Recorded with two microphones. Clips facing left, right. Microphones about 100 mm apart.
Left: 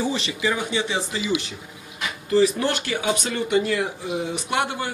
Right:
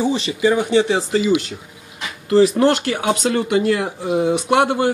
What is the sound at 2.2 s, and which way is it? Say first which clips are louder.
Speech: right 6 dB; 60° right (ahead or behind).